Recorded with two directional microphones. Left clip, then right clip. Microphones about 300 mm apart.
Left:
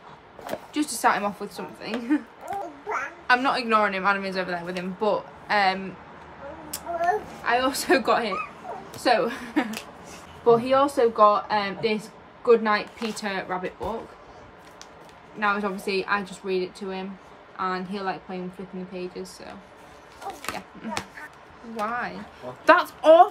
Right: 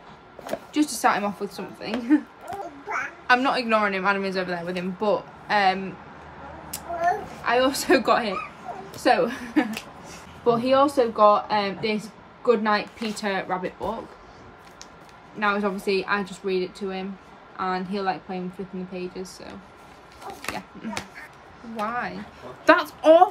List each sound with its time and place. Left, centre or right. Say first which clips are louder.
0.5 s a man's voice: right 3 dB; centre
3.3 s a man's voice: right 1 dB; centre
7.4 s a man's voice: right 2 dB; centre
15.3 s a man's voice: right 1 dB; centre